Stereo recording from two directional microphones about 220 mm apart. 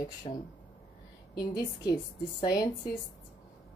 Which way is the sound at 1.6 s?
20° left (ahead or behind).